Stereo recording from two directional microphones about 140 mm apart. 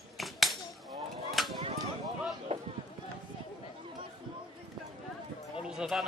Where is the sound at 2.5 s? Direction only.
35° right (ahead or behind).